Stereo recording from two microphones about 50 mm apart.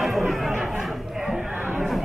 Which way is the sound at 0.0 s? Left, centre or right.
Centre.